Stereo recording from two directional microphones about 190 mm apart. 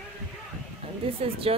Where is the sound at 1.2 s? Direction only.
30° right (ahead or behind).